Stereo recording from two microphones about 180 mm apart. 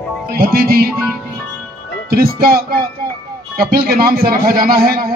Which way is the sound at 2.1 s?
55° right (ahead or behind).